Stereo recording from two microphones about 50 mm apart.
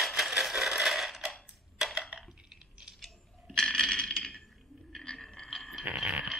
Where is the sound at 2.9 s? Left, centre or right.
Centre.